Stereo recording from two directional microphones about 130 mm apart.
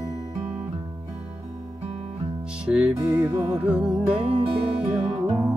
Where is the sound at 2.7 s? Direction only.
10° right (ahead or behind).